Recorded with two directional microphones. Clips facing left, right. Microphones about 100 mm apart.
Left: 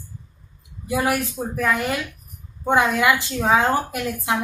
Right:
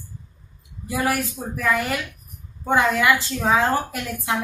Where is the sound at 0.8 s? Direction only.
20° left (ahead or behind).